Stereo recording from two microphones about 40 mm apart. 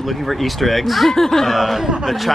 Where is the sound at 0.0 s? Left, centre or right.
Centre.